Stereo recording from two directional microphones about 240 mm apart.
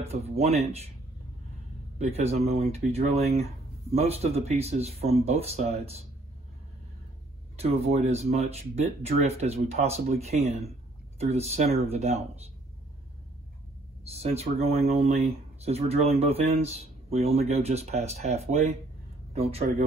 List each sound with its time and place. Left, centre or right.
0.0 s speech: right
2.0 s speech: right
7.5 s speech: right
14.0 s speech: right